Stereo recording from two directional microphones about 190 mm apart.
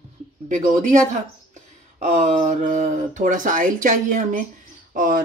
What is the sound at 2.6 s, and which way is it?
Speech, 40° right (ahead or behind).